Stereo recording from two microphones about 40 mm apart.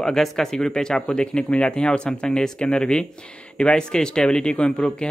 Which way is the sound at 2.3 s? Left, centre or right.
Centre.